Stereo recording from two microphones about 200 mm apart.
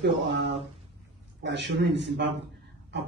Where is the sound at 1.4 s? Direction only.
60° right (ahead or behind).